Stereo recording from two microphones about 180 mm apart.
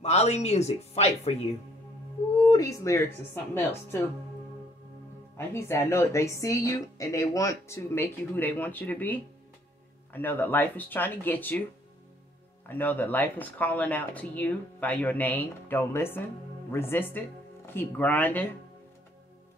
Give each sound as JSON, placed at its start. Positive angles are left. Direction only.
{"t": 0.0, "sound": "speech", "side_deg": 35}
{"t": 2.4, "sound": "speech", "side_deg": 20}
{"t": 5.5, "sound": "speech", "side_deg": 15}
{"t": 12.6, "sound": "speech", "side_deg": 10}